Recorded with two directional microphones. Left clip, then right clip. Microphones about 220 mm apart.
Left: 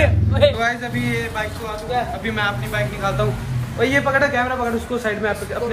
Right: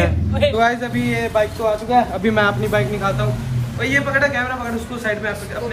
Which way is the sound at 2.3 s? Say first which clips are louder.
Right 6 dB; 10° right (ahead or behind).